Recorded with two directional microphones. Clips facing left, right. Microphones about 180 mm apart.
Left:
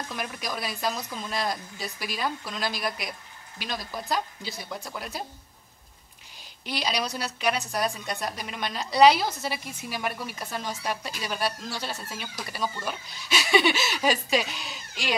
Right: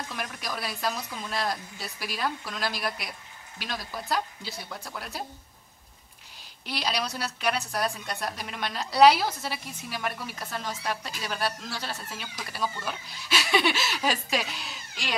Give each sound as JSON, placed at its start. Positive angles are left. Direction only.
{"t": 0.1, "sound": "a woman's voice", "side_deg": 0}
{"t": 6.6, "sound": "a woman's voice", "side_deg": 0}